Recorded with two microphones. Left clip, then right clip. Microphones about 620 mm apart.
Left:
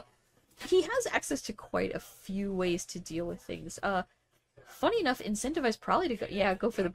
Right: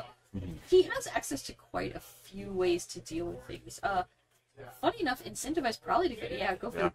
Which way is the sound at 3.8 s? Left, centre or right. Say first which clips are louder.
Even; left.